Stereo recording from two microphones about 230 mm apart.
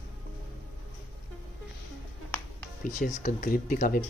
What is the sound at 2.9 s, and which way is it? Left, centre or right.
Speech, left.